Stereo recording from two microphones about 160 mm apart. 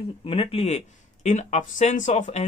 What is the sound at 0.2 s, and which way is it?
Speech, 35° left (ahead or behind).